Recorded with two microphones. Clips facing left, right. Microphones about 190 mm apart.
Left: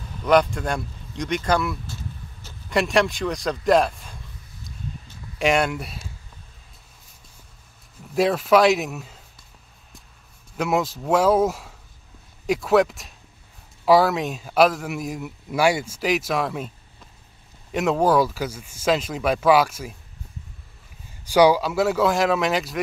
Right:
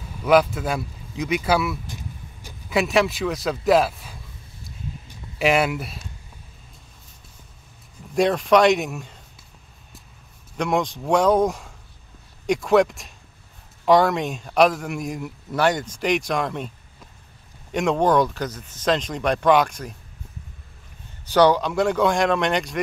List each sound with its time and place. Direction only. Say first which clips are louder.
0.0 s speech: right 1 dB; 5° right (ahead or behind)
1.9 s vehicle: even; 15° right (ahead or behind)
2.7 s a man's voice: even; centre (ahead or behind)
5.4 s a man's voice: right 1 dB; 5° right (ahead or behind)
8.1 s a man's voice: even; 5° left (ahead or behind)
10.6 s a man's voice: even; 5° left (ahead or behind)
17.7 s a man's voice: even; 5° left (ahead or behind)
21.3 s a man's voice: left 1 dB; 10° left (ahead or behind)